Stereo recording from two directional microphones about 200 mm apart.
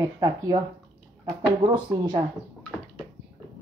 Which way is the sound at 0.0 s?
15° right (ahead or behind).